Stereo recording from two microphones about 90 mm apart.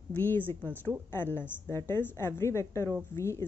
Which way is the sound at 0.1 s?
20° left (ahead or behind).